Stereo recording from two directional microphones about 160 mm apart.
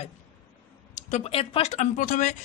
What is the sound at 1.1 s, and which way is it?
Speech, 40° left (ahead or behind).